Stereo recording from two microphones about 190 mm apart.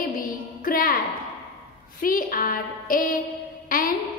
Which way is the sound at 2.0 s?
50° left (ahead or behind).